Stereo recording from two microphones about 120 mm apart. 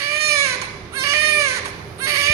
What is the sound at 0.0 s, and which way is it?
Baby cry, 20° right (ahead or behind).